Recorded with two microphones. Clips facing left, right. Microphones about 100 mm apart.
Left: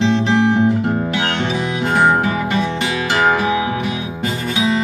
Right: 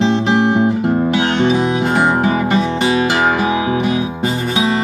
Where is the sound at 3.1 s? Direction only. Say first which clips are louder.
Right 1 dB; 15° right (ahead or behind).